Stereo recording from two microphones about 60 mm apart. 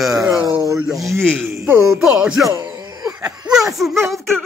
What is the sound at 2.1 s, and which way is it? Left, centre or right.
Speech, centre.